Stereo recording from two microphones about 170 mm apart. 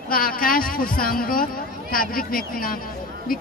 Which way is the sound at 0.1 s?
60° left (ahead or behind).